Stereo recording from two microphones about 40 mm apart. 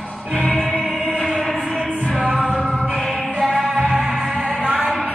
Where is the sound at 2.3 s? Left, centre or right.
Left.